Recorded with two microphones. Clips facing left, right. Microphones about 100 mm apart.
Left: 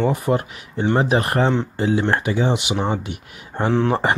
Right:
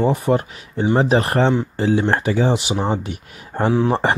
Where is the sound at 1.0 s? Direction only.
30° right (ahead or behind).